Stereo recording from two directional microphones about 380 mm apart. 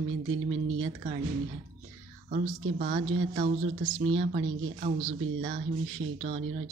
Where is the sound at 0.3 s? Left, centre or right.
Right.